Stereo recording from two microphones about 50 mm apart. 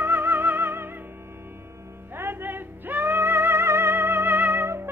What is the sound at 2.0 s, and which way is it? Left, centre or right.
Music, right.